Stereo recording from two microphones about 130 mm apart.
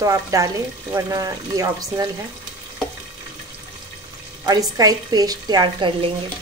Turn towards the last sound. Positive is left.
turn(degrees=-40)  # may be behind; listen again after turning